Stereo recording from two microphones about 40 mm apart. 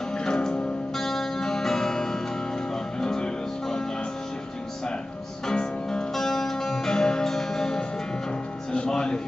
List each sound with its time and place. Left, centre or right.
0.2 s music: centre
5.5 s music: centre